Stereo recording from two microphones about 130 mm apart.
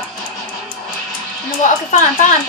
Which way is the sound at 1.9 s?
65° left (ahead or behind).